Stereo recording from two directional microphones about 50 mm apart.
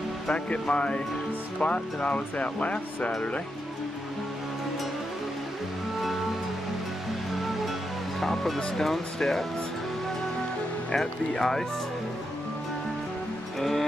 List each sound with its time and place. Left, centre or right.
0.3 s speech: centre
8.2 s speech: centre
11.0 s speech: centre
13.6 s music: centre